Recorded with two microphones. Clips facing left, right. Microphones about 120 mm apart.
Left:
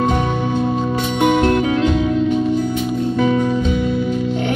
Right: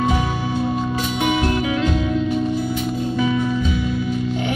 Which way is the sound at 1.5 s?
50° left (ahead or behind).